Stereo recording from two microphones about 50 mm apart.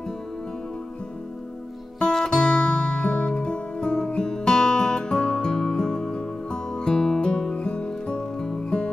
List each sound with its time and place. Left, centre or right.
2.0 s music: centre